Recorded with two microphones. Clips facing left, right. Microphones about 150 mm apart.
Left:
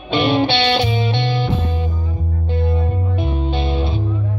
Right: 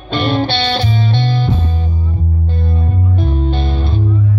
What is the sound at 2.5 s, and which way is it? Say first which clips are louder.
Music: left 6 dB; 55° left (ahead or behind).